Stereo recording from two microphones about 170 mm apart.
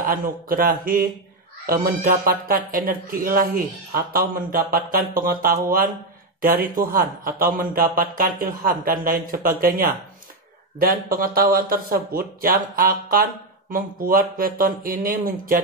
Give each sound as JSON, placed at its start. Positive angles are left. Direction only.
{"t": 0.0, "sound": "speech", "side_deg": -55}